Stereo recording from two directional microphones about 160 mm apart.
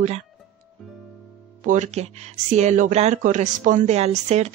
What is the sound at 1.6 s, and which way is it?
Speech, 50° right (ahead or behind).